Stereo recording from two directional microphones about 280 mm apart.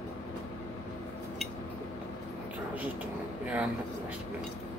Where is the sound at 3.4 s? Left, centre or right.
Centre.